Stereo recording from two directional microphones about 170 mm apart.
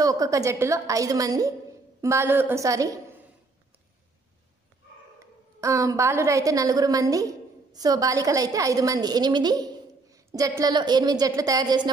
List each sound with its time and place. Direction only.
0.0 s a woman's voice: 20° right (ahead or behind)
5.6 s a woman's voice: 20° right (ahead or behind)